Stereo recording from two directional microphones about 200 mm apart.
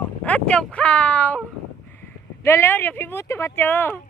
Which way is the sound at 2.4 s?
10° left (ahead or behind).